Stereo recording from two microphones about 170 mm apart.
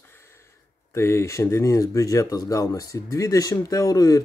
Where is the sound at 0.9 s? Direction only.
15° left (ahead or behind).